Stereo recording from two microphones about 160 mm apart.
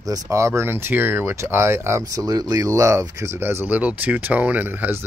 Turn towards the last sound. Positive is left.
turn(degrees=-10)  # may be behind; listen again after turning